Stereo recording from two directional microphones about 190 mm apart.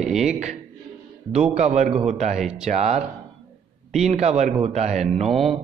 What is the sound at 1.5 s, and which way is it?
Speech, 40° right (ahead or behind).